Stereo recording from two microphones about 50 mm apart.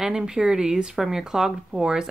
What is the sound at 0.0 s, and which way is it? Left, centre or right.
Speech, centre.